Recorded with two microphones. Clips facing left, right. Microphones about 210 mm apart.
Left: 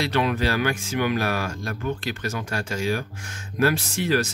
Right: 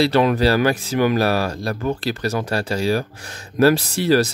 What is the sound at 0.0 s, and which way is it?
Speech, 40° right (ahead or behind).